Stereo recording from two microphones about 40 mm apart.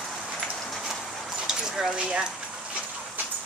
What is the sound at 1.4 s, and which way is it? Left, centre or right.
Dog, centre.